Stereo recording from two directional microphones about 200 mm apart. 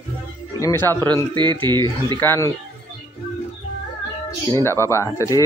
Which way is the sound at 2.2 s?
15° left (ahead or behind).